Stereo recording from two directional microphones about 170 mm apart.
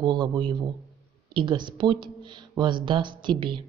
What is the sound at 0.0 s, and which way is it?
A woman's voice, 25° right (ahead or behind).